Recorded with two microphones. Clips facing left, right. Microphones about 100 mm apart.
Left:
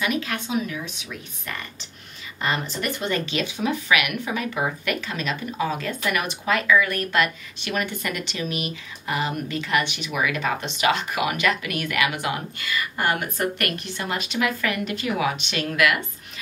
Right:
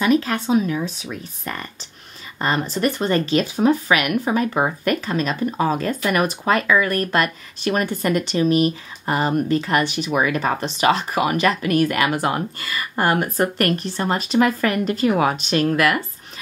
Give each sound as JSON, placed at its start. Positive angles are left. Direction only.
{"t": 0.0, "sound": "speech", "side_deg": -35}